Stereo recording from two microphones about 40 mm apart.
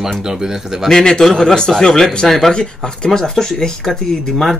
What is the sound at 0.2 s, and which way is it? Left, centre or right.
Speech, centre.